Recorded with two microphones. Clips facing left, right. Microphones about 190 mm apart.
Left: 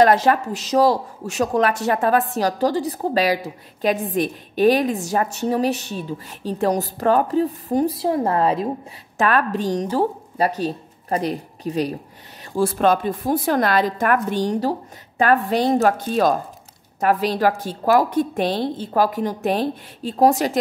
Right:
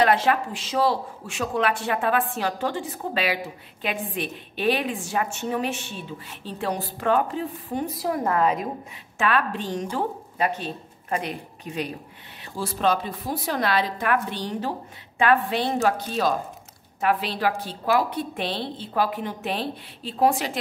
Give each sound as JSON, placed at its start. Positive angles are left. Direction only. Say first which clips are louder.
{"t": 0.0, "sound": "speech", "louder": "left 5 dB", "side_deg": 40}
{"t": 9.2, "sound": "a woman's voice", "louder": "left 5 dB", "side_deg": 45}
{"t": 12.5, "sound": "a woman's voice", "louder": "left 6 dB", "side_deg": 50}